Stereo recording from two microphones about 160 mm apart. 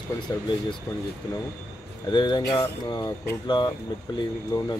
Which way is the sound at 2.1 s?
25° left (ahead or behind).